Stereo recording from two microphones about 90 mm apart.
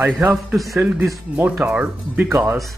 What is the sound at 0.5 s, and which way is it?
Speech, centre (ahead or behind).